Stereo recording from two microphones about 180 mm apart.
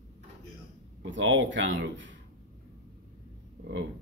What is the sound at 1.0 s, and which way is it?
Speech, 90° right.